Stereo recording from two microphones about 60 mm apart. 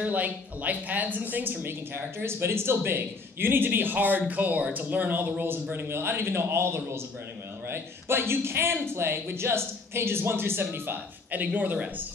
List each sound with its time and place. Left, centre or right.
0.0 s a woman's voice: right